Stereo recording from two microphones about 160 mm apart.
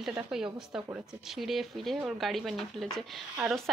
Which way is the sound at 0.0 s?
5° right (ahead or behind).